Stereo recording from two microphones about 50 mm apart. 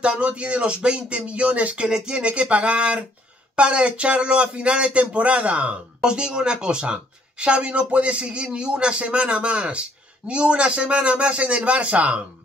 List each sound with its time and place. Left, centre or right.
0.0 s speech: right
1.9 s speech: centre